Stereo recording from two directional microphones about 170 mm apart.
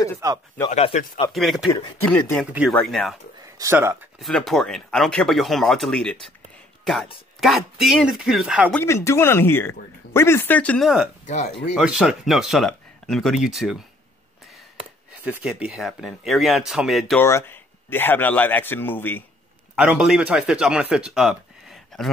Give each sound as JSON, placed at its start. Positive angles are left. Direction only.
{"t": 0.2, "sound": "speech", "side_deg": -20}
{"t": 0.8, "sound": "speech", "side_deg": 35}
{"t": 1.3, "sound": "speech", "side_deg": 0}
{"t": 3.5, "sound": "speech", "side_deg": -15}
{"t": 4.2, "sound": "speech", "side_deg": 5}
{"t": 8.7, "sound": "speech", "side_deg": 15}
{"t": 11.7, "sound": "speech", "side_deg": -5}
{"t": 15.2, "sound": "speech", "side_deg": -10}
{"t": 17.2, "sound": "speech", "side_deg": 15}
{"t": 19.7, "sound": "speech", "side_deg": -5}